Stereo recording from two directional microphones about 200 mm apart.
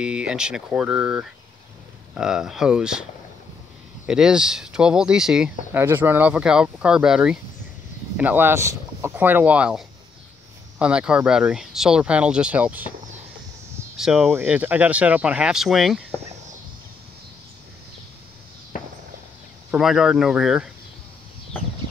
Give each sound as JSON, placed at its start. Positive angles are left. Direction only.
{"t": 0.0, "sound": "speech", "side_deg": -5}
{"t": 13.9, "sound": "speech", "side_deg": 0}
{"t": 18.7, "sound": "walk", "side_deg": 40}
{"t": 19.7, "sound": "speech", "side_deg": 0}